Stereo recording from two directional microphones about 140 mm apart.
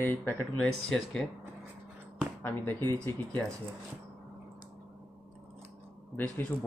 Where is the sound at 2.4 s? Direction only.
15° left (ahead or behind).